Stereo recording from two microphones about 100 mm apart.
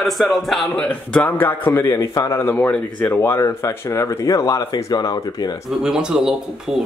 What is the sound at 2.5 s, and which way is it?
Speech, 15° left (ahead or behind).